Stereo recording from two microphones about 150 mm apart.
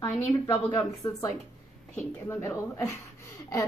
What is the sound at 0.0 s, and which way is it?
A woman's voice, 20° left (ahead or behind).